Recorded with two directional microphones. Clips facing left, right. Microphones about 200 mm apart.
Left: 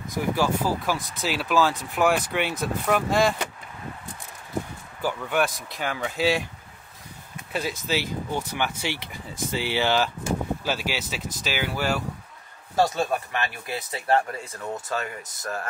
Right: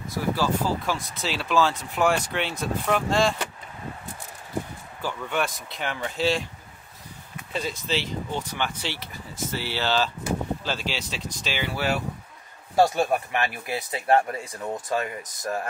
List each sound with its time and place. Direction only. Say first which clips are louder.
0.1 s speech: left 1 dB; 15° left (ahead or behind)
0.8 s speech: left 2 dB; centre (ahead or behind)
5.0 s speech: left 3 dB; 5° left (ahead or behind)
7.5 s speech: left 1 dB; 5° left (ahead or behind)
12.7 s speech: right 2 dB; 25° right (ahead or behind)